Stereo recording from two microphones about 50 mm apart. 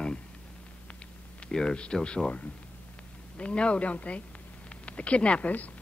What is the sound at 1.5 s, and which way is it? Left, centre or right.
A woman's voice, centre.